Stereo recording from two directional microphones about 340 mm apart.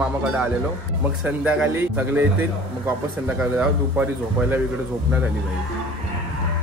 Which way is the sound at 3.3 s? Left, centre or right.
Centre.